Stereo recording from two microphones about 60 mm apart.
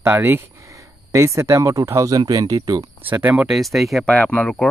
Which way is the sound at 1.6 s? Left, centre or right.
Right.